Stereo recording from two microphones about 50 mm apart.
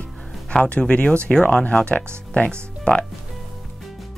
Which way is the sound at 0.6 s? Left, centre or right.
Left.